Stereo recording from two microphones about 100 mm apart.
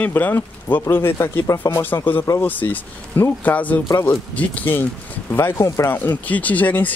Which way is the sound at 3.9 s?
25° left (ahead or behind).